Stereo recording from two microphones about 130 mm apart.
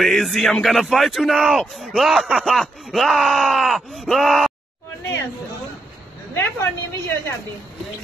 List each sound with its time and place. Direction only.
0.0 s speech: centre (ahead or behind)
6.3 s a woman's voice: 20° left (ahead or behind)